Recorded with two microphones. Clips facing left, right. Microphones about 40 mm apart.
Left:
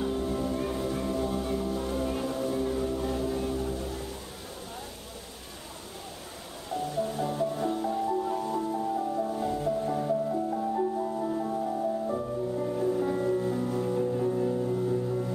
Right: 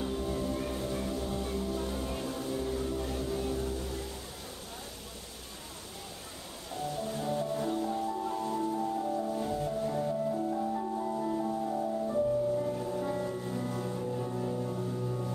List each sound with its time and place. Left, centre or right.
0.0 s music: centre
2.5 s a sound: centre
3.1 s vehicle: centre
7.1 s music: centre